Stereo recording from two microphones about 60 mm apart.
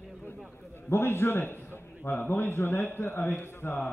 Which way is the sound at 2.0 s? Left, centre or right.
Left.